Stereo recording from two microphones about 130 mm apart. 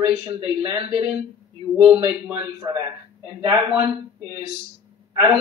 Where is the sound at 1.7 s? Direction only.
10° right (ahead or behind).